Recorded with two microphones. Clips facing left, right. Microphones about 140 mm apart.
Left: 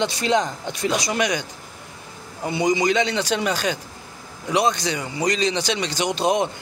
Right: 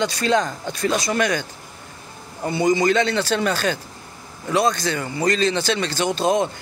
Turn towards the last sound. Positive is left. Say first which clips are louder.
# right 1 dB
turn(degrees=20)  # may be behind; listen again after turning